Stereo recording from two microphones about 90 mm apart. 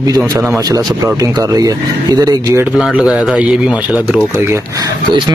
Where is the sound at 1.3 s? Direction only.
45° right (ahead or behind).